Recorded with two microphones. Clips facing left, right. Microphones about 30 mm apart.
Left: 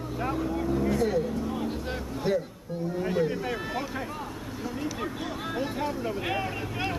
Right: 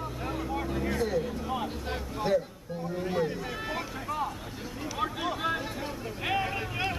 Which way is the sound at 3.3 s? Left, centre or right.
Centre.